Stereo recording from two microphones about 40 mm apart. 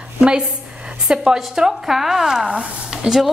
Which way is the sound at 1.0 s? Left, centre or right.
Centre.